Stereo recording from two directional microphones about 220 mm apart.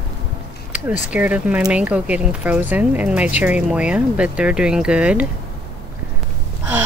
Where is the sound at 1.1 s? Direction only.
5° right (ahead or behind).